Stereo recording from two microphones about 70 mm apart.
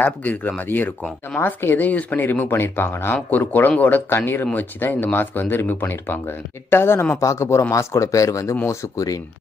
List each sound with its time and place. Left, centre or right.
0.0 s speech: left
7.2 s speech: left